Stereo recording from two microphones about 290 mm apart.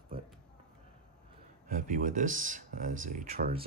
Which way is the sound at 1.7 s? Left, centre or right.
Right.